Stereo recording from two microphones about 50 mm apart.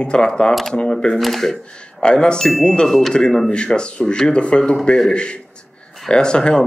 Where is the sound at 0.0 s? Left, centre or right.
Centre.